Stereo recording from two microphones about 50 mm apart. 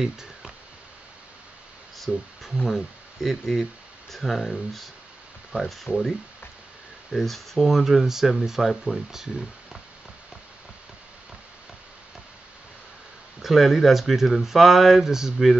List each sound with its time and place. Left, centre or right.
0.0 s speech: centre
2.0 s speech: centre
5.9 s speech: left
7.1 s speech: centre
13.4 s speech: centre